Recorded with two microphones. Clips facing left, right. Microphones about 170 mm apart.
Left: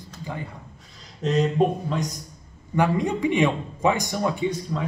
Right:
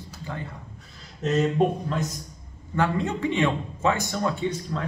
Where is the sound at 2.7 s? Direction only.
15° left (ahead or behind).